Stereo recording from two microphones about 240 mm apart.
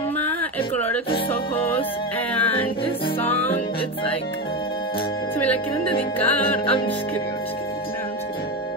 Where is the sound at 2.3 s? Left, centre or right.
Centre.